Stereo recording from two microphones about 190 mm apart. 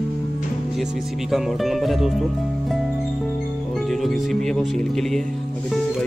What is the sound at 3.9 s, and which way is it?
Music, centre (ahead or behind).